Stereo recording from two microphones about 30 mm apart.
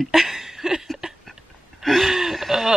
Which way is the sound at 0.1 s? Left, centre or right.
Centre.